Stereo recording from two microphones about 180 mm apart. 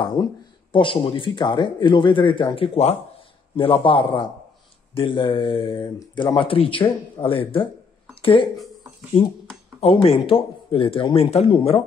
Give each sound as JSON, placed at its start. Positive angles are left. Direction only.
{"t": 0.0, "sound": "speech", "side_deg": 25}
{"t": 8.1, "sound": "a sound", "side_deg": 30}
{"t": 9.8, "sound": "speech", "side_deg": 35}